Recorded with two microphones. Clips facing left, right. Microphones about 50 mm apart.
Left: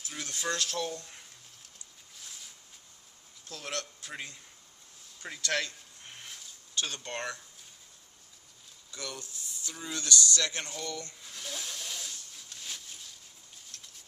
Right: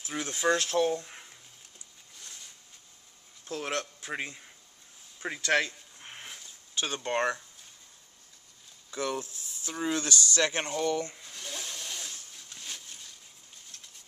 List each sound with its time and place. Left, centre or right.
0.0 s speech: right
2.1 s zipper: centre
3.4 s speech: right
5.2 s a sound: right
8.9 s speech: right
11.2 s a sound: centre